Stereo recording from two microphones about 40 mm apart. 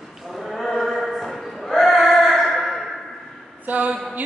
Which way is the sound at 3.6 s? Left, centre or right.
Right.